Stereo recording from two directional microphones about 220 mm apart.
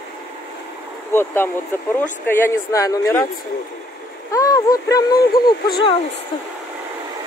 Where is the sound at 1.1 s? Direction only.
10° left (ahead or behind).